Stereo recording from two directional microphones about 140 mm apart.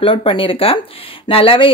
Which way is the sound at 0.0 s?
40° left (ahead or behind).